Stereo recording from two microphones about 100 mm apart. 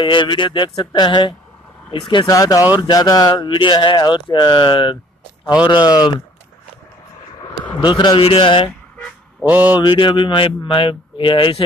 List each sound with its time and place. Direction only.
0.0 s speech: 55° left (ahead or behind)
2.2 s speech: 35° left (ahead or behind)
7.7 s speech: 50° left (ahead or behind)
8.1 s speech: 70° left (ahead or behind)
8.6 s car alarm: 15° left (ahead or behind)
9.5 s mantra: 20° right (ahead or behind)
9.8 s speech: 50° left (ahead or behind)